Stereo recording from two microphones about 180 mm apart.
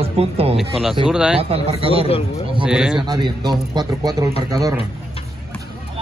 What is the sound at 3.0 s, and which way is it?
Speech, 20° right (ahead or behind).